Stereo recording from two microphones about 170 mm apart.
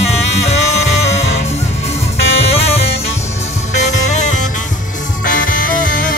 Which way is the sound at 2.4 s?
35° left (ahead or behind).